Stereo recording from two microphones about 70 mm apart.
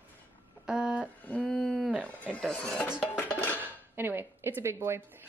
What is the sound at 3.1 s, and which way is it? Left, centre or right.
Music, left.